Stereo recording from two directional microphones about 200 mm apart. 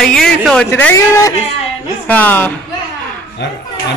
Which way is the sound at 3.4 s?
60° left (ahead or behind).